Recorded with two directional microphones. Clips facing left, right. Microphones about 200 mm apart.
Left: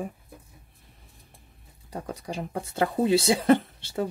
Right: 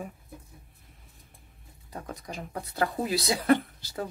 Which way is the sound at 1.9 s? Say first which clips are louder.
Left 5 dB; 30° left (ahead or behind).